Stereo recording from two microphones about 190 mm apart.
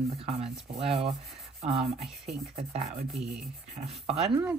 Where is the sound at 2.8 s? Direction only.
55° right (ahead or behind).